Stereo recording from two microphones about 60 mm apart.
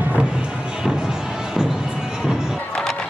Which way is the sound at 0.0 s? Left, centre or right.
Right.